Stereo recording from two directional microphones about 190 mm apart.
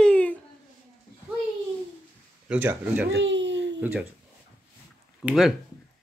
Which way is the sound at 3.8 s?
10° right (ahead or behind).